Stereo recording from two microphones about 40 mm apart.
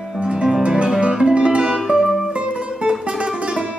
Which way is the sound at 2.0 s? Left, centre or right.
Centre.